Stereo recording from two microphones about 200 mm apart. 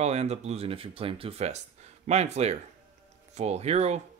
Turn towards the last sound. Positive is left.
turn(degrees=-35)  # may be behind; listen again after turning